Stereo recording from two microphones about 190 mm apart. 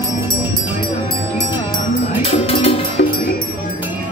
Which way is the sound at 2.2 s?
30° left (ahead or behind).